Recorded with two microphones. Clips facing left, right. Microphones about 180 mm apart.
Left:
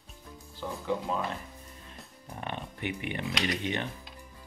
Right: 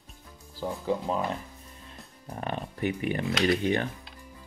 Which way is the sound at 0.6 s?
30° right (ahead or behind).